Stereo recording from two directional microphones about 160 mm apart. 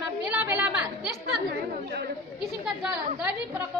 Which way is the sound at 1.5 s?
90° right.